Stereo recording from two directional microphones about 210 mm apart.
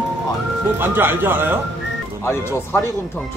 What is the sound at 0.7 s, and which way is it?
Speech, 10° right (ahead or behind).